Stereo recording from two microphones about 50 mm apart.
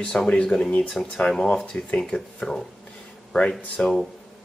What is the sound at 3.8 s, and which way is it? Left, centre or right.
Speech, left.